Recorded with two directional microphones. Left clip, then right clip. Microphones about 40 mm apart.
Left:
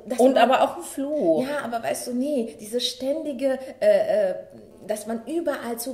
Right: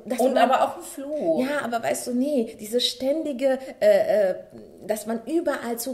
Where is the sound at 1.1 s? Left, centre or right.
Right.